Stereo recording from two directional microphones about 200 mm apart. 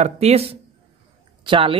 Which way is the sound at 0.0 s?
30° right (ahead or behind).